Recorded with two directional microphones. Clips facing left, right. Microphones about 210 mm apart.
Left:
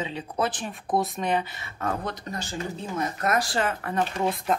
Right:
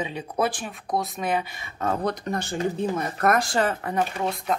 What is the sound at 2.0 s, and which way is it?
Speech, 40° right (ahead or behind).